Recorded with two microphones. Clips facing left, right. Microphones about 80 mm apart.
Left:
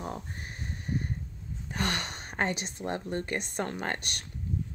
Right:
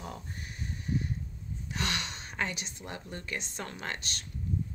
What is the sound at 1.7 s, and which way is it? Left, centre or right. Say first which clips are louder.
A woman's voice: left 3 dB; left.